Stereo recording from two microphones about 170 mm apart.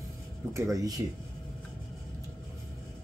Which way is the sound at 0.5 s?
20° right (ahead or behind).